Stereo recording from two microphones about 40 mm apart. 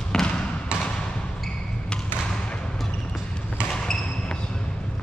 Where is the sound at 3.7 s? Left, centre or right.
Centre.